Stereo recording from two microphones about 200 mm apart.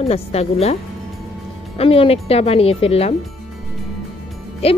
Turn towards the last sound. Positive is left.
turn(degrees=30)  # may be behind; listen again after turning